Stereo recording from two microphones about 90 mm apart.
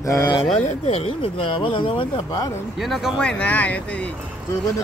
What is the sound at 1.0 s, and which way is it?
Speech, 90° left.